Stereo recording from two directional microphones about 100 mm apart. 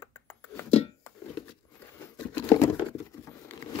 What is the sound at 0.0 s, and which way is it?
Music, 35° left (ahead or behind).